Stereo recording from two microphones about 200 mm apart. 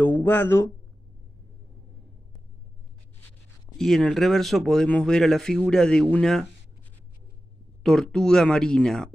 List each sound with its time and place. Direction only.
0.0 s speech: 10° left (ahead or behind)
3.7 s speech: centre (ahead or behind)
7.8 s speech: centre (ahead or behind)